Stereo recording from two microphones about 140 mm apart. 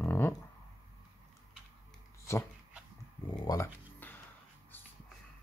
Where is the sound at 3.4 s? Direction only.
25° left (ahead or behind).